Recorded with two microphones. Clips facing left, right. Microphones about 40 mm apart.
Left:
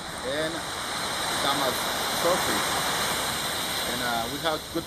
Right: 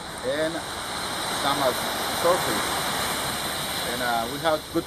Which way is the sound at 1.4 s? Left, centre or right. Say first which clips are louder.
Right 4 dB; centre.